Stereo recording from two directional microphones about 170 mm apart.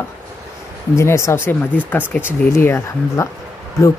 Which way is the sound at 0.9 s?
15° left (ahead or behind).